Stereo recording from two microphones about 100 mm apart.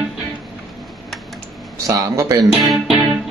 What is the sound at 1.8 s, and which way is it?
Speech, 35° right (ahead or behind).